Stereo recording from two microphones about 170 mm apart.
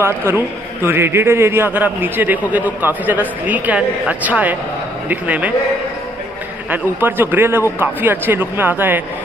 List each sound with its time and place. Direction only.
0.0 s a man's voice: 15° right (ahead or behind)
6.7 s a man's voice: 10° right (ahead or behind)